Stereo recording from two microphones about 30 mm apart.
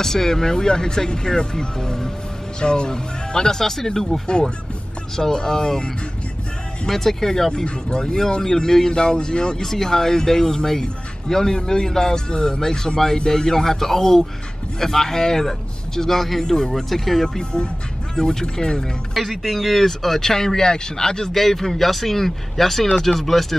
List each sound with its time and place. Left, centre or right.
0.0 s speech: centre
6.9 s speech: centre; by 9.6 s left
9.6 s speech: centre
17.4 s speech: left
19.1 s speech: centre
20.2 s speech: centre
21.3 s speech: centre